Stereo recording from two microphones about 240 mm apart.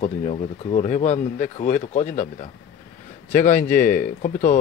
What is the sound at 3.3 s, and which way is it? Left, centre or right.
Speech, left.